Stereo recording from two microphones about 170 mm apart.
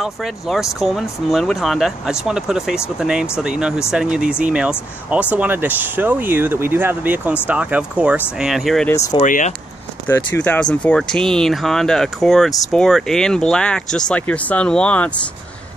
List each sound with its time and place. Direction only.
0.0 s speech: centre (ahead or behind)
9.2 s speech: 50° left (ahead or behind)
10.0 s speech: 15° left (ahead or behind)